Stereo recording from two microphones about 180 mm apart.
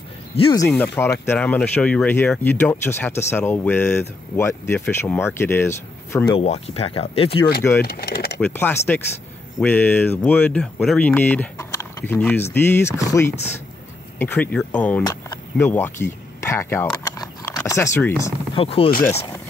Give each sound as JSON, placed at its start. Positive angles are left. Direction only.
{"t": 0.7, "sound": "speech", "side_deg": 10}
{"t": 6.3, "sound": "speech", "side_deg": 35}
{"t": 7.8, "sound": "speech", "side_deg": 60}
{"t": 8.4, "sound": "speech", "side_deg": 5}
{"t": 18.5, "sound": "speech", "side_deg": 30}